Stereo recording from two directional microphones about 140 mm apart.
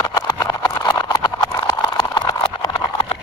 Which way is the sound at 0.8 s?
30° left (ahead or behind).